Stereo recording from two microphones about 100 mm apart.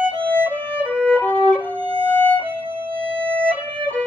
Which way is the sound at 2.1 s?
15° left (ahead or behind).